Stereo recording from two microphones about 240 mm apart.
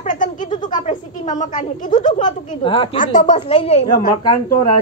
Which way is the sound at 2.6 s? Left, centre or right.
Left.